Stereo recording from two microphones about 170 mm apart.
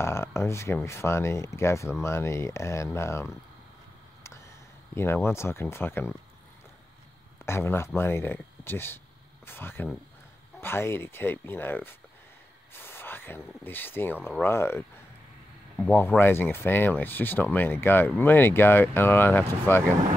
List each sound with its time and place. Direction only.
0.0 s speech: 15° left (ahead or behind)
4.9 s speech: 15° left (ahead or behind)
7.4 s speech: 15° left (ahead or behind)
12.7 s a sound: 10° left (ahead or behind)
13.7 s speech: 10° left (ahead or behind)